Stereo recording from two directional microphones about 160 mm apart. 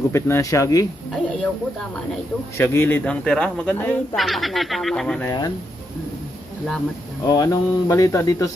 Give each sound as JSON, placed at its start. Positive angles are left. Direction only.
{"t": 0.1, "sound": "speech", "side_deg": 20}
{"t": 2.5, "sound": "speech", "side_deg": 15}
{"t": 5.2, "sound": "speech", "side_deg": 25}
{"t": 7.2, "sound": "speech", "side_deg": 20}